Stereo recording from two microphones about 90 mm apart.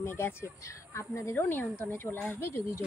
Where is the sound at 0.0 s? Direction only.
30° left (ahead or behind).